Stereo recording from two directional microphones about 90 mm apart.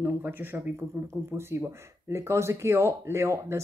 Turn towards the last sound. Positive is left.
turn(degrees=-30)  # may be behind; listen again after turning